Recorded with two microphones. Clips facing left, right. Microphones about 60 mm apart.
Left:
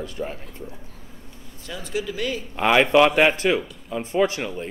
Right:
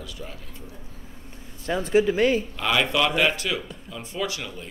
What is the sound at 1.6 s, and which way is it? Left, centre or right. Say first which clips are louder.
Speech: right 8 dB; right.